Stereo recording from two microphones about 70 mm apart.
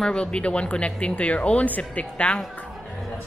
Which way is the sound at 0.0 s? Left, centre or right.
Centre.